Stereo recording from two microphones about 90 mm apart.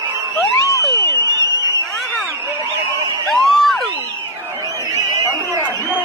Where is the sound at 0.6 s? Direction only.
40° left (ahead or behind).